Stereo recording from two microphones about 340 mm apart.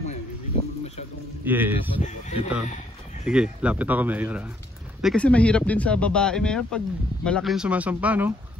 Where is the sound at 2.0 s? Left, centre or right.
Left.